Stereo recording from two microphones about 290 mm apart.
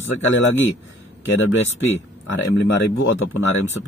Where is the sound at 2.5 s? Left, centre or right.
Left.